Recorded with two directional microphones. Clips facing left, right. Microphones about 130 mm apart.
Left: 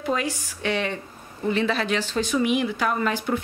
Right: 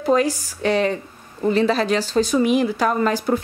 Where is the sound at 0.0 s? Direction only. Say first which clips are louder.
Right 8 dB; 40° right (ahead or behind).